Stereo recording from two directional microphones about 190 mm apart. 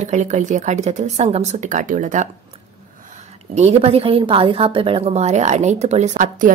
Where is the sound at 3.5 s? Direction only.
35° right (ahead or behind).